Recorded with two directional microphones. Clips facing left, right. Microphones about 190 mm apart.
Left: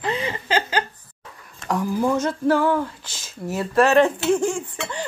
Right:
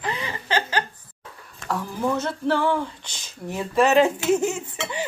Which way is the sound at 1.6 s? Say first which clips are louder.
Left 4 dB; 15° left (ahead or behind).